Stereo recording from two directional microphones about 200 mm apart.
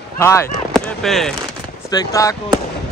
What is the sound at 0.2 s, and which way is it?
Speech, 15° left (ahead or behind).